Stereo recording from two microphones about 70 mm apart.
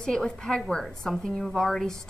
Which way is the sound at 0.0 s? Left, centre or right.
Centre.